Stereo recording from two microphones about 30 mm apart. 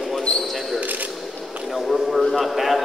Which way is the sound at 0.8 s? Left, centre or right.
Right.